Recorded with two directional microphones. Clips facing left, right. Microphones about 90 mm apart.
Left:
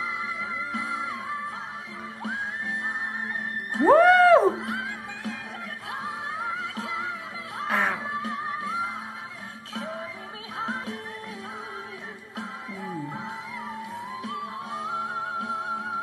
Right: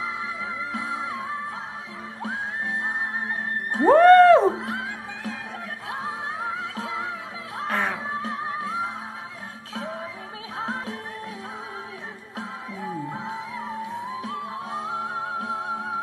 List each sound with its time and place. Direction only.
0.7 s music: 30° right (ahead or behind)
3.8 s music: centre (ahead or behind)
5.9 s music: 30° right (ahead or behind)
7.6 s a sound: 5° left (ahead or behind)
8.0 s music: 35° right (ahead or behind)
13.8 s music: 30° right (ahead or behind)